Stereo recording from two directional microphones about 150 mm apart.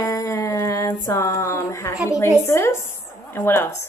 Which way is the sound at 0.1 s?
20° left (ahead or behind).